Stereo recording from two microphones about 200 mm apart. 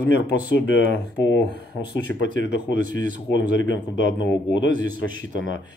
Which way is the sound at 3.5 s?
65° left (ahead or behind).